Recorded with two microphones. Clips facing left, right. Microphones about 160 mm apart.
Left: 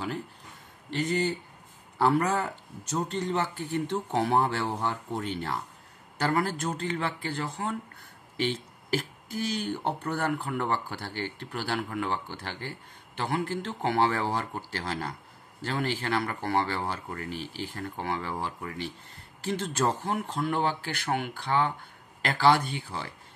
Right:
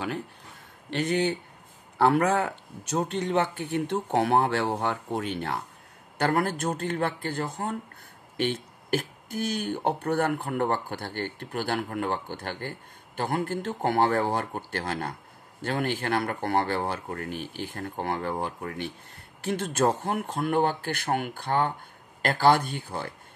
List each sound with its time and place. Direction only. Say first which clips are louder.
0.8 s speech: right 2 dB; 65° right (ahead or behind); by 23.1 s 50° right (ahead or behind)